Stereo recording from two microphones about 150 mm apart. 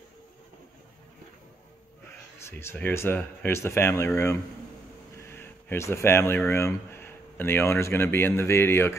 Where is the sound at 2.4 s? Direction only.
15° left (ahead or behind).